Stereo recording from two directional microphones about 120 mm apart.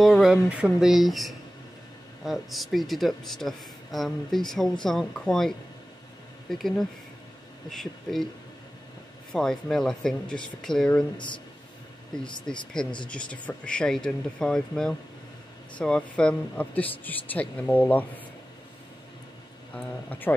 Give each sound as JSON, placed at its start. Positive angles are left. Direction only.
{"t": 0.0, "sound": "speech", "side_deg": 0}
{"t": 7.7, "sound": "speech", "side_deg": 0}
{"t": 9.3, "sound": "speech", "side_deg": 5}
{"t": 11.1, "sound": "a man's voice", "side_deg": 40}
{"t": 12.5, "sound": "speech", "side_deg": 5}
{"t": 19.7, "sound": "speech", "side_deg": 15}